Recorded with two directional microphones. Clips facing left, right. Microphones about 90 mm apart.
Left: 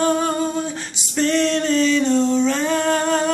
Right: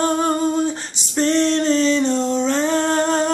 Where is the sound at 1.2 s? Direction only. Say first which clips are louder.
Right 1 dB; 25° right (ahead or behind).